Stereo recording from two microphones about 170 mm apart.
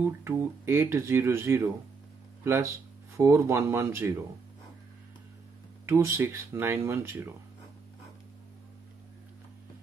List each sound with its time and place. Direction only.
0.0 s speech: 15° right (ahead or behind)
5.9 s speech: 15° right (ahead or behind)